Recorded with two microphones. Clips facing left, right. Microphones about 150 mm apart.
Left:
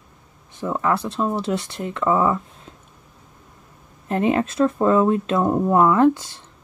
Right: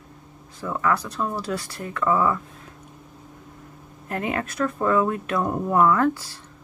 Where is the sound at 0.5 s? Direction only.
25° left (ahead or behind).